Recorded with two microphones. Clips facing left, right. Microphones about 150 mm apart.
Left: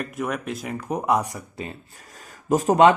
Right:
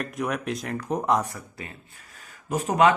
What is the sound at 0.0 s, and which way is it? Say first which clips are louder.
Speech: left 1 dB; centre (ahead or behind).